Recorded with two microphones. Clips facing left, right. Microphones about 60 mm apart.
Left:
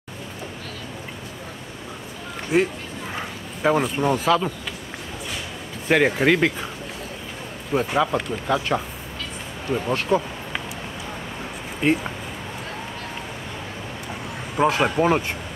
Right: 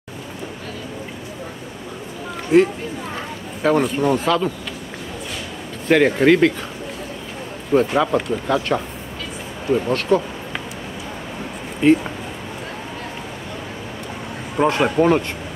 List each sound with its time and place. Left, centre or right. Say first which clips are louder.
2.5 s speech: right 6 dB; centre
5.9 s speech: right 4 dB; centre
7.7 s speech: right 5 dB; centre
11.8 s speech: right 6 dB; centre
14.6 s speech: right 3 dB; centre